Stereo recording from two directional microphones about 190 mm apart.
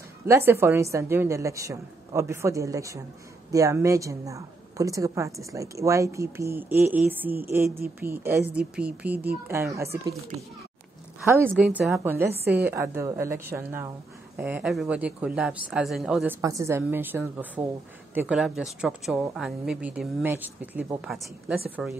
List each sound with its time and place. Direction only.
0.3 s a woman's voice: 10° right (ahead or behind)
11.1 s a woman's voice: 10° right (ahead or behind)
16.3 s a woman's voice: 15° right (ahead or behind)